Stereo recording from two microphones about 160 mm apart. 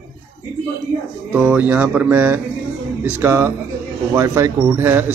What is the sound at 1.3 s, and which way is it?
A man's voice, 10° right (ahead or behind).